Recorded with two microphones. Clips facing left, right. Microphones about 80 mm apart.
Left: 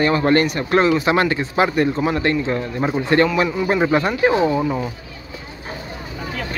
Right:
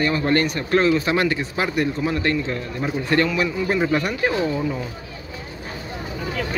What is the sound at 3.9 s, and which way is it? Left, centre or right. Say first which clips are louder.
Speech: left 5 dB; left.